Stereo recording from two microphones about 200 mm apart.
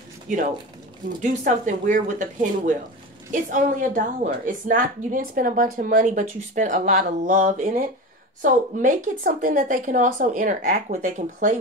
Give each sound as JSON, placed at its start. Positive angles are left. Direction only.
{"t": 1.0, "sound": "a woman's voice", "side_deg": -40}